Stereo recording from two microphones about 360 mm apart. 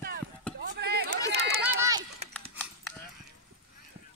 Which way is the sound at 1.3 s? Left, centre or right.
Right.